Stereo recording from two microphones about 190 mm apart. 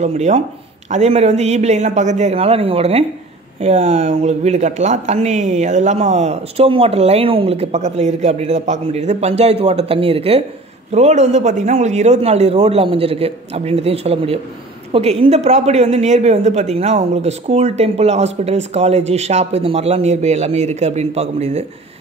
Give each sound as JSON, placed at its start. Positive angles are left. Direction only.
{"t": 0.0, "sound": "speech", "side_deg": -35}